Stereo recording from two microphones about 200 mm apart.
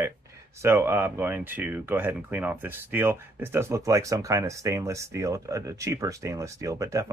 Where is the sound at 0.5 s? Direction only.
10° right (ahead or behind).